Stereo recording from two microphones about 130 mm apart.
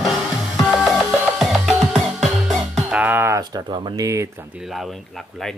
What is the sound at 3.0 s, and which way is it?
Music, 20° right (ahead or behind).